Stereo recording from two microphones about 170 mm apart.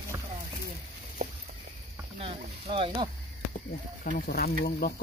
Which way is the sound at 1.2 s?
55° right (ahead or behind).